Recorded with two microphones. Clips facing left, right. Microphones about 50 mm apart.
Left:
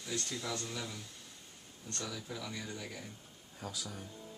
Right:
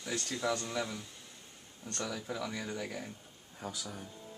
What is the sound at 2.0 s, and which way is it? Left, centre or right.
Speech, right.